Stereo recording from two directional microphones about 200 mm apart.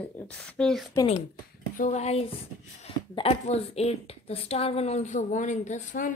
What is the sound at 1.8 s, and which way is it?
Speech, 35° left (ahead or behind).